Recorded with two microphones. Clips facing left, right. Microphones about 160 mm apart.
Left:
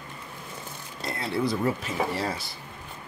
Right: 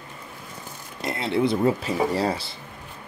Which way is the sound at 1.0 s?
20° right (ahead or behind).